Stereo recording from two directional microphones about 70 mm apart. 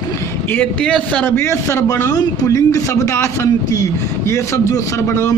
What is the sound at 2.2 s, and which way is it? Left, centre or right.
A man's voice, left.